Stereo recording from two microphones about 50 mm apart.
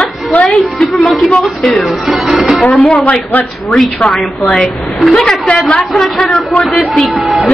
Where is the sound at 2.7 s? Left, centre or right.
Left.